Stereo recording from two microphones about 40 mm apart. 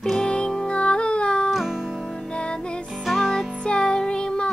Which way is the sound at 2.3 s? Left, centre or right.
Left.